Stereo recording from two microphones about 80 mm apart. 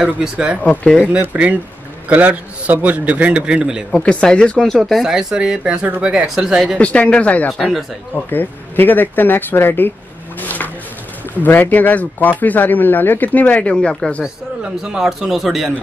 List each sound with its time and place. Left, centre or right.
0.0 s a man's voice: centre
0.7 s speech: centre
1.2 s a man's voice: centre
3.9 s a man's voice: centre
6.8 s speech: centre
8.3 s speech: left
10.4 s a sound: left
11.4 s speech: left
14.2 s speech: centre